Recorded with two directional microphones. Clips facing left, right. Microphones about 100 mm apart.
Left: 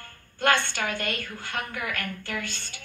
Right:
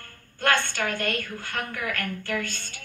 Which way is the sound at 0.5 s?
50° right (ahead or behind).